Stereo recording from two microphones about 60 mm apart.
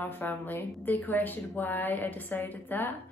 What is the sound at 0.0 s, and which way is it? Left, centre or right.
A woman's voice, left.